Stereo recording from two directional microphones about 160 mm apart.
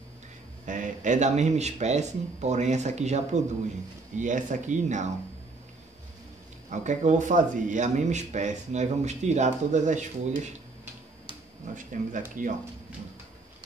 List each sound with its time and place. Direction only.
0.7 s speech: 50° right (ahead or behind)
6.7 s speech: 50° right (ahead or behind)
11.7 s speech: 55° right (ahead or behind)